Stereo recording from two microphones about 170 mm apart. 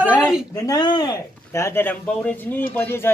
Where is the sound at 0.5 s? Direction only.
20° left (ahead or behind).